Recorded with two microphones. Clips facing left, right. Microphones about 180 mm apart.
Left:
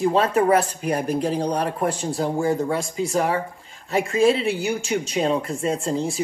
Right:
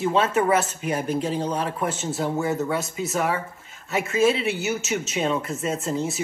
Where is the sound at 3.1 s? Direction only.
30° left (ahead or behind).